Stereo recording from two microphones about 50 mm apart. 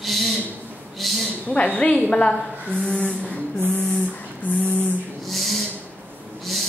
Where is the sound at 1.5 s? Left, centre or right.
Left.